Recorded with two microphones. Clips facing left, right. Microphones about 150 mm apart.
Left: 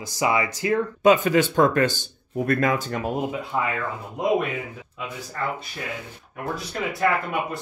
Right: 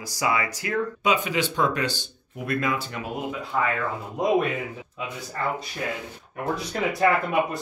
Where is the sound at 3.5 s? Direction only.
20° left (ahead or behind).